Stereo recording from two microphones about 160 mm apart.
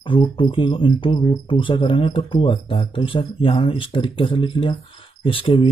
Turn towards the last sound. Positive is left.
turn(degrees=35)  # may be behind; listen again after turning